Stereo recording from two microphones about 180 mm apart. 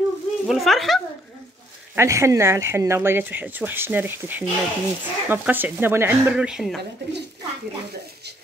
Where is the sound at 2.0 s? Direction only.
15° right (ahead or behind).